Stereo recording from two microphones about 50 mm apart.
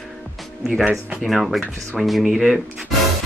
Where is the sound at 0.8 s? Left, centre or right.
Right.